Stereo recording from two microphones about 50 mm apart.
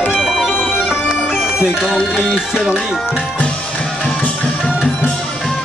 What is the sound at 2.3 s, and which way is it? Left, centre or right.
Speech, centre.